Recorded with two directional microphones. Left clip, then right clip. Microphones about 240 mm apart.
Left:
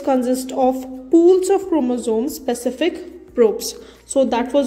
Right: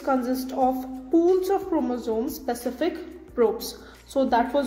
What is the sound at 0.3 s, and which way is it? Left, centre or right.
A woman's voice, left.